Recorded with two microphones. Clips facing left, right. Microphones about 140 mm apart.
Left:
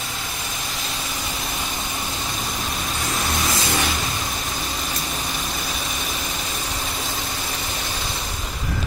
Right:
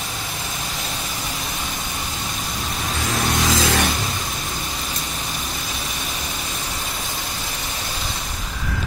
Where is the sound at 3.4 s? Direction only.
90° right.